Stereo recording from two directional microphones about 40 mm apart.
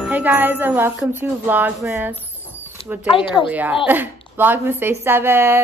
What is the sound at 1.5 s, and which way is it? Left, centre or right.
Speech, right.